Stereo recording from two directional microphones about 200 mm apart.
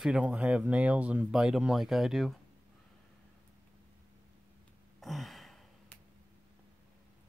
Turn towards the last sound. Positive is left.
turn(degrees=0)  # may be behind; listen again after turning